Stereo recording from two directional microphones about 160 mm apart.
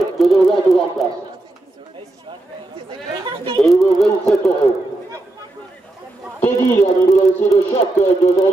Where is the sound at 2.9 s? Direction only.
30° right (ahead or behind).